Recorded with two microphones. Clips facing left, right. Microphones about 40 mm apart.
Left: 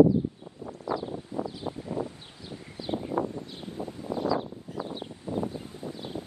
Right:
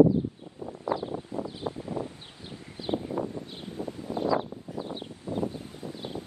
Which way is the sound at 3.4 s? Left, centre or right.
Right.